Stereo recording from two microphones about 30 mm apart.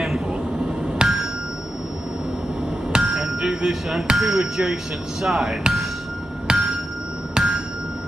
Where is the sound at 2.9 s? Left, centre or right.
Right.